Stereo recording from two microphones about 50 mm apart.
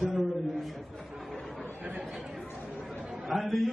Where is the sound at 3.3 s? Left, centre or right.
Centre.